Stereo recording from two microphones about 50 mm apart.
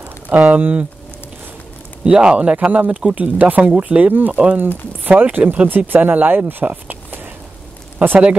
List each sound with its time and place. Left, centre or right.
0.3 s speech: right
2.0 s speech: centre
2.5 s speech: right
5.4 s speech: right
5.7 s speech: right